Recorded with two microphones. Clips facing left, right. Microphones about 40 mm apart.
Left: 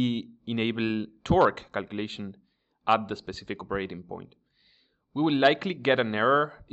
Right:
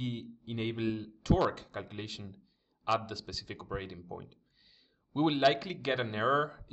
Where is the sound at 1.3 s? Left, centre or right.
Left.